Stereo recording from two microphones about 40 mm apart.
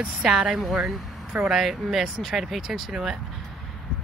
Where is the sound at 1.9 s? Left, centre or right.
Centre.